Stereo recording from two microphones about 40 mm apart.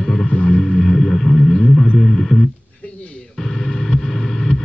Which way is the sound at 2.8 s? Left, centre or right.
Left.